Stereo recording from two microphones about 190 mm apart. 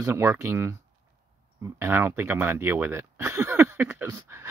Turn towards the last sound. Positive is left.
turn(degrees=-15)  # may be behind; listen again after turning